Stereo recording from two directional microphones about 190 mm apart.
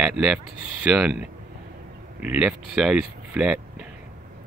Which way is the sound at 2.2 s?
5° right (ahead or behind).